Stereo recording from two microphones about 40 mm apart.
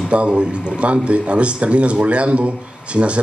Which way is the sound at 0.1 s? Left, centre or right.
Right.